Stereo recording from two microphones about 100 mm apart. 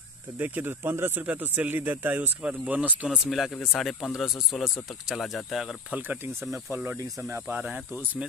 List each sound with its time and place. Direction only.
0.4 s speech: 20° right (ahead or behind)
3.3 s speech: centre (ahead or behind)
6.5 s speech: 25° right (ahead or behind)